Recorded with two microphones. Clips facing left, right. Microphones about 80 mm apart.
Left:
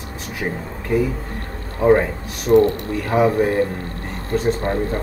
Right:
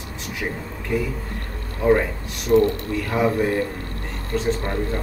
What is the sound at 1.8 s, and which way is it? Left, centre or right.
Speech, left.